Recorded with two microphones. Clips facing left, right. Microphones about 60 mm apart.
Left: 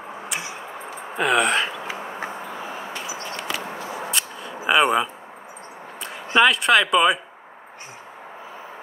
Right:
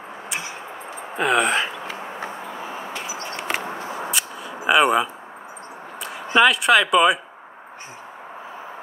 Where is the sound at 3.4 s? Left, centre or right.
Right.